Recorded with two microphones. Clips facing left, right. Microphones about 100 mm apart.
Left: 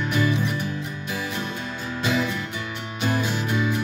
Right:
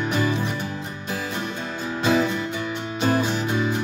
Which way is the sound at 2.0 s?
35° right (ahead or behind).